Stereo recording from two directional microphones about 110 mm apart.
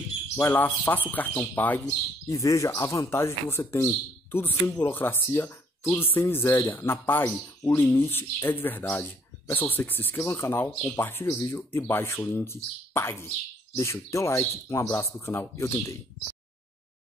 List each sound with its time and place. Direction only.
0.4 s speech: 15° left (ahead or behind)
2.2 s speech: 30° left (ahead or behind)